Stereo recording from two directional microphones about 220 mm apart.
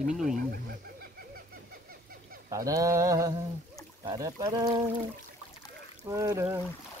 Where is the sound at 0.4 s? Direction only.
45° right (ahead or behind).